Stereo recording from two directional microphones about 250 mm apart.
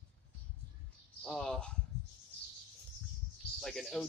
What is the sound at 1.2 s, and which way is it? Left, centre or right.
Speech, centre.